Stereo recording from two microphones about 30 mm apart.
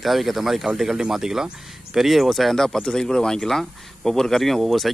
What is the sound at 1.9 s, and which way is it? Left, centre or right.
Speech, centre.